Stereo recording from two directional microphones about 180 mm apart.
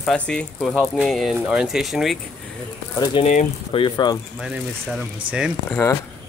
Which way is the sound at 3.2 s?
40° left (ahead or behind).